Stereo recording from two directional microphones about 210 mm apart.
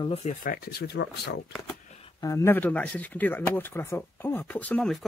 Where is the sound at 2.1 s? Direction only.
15° left (ahead or behind).